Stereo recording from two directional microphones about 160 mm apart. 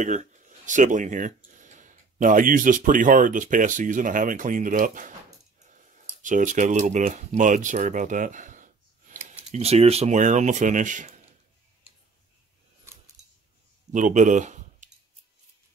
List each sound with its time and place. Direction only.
0.0 s speech: 50° right (ahead or behind)
6.2 s speech: 50° right (ahead or behind)
13.2 s a sound: 45° right (ahead or behind)
13.9 s speech: 50° right (ahead or behind)